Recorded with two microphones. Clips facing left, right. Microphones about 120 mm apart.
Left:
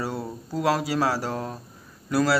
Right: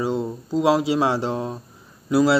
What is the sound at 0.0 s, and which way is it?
A man's voice, 20° right (ahead or behind).